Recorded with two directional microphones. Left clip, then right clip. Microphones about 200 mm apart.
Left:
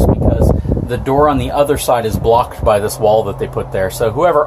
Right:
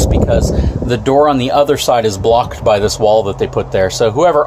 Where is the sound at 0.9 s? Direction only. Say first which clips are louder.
Right 2 dB; 25° right (ahead or behind).